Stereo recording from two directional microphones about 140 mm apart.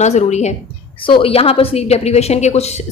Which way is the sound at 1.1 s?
45° left (ahead or behind).